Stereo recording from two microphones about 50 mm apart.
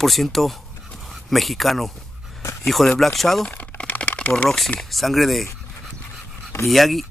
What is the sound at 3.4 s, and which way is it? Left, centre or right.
Typing, left.